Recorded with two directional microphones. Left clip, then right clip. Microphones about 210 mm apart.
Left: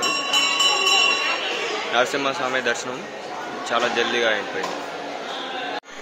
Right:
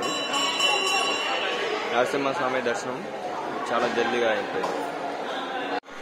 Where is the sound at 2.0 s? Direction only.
Centre (ahead or behind).